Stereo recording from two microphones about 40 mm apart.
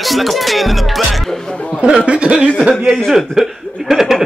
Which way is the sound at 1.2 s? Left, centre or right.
Centre.